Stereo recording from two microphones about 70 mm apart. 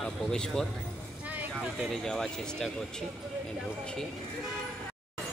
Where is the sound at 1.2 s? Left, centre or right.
Right.